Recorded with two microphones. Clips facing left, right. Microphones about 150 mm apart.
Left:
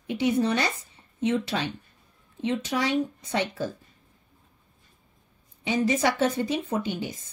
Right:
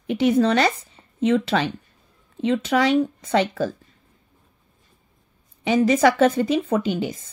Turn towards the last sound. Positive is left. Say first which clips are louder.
# right 7 dB
turn(degrees=-90)